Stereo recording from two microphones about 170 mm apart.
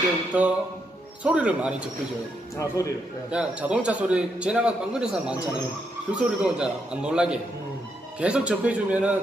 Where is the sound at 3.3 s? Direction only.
5° right (ahead or behind).